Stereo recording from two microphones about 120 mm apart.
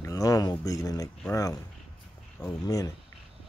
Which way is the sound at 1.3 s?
25° left (ahead or behind).